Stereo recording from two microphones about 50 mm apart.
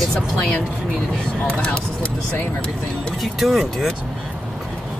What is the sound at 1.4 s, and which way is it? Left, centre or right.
Speech, left.